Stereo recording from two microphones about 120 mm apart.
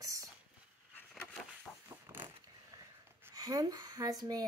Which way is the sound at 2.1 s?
15° right (ahead or behind).